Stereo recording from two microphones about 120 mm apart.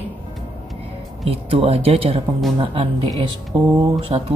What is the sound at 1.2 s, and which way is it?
Speech, 55° right (ahead or behind).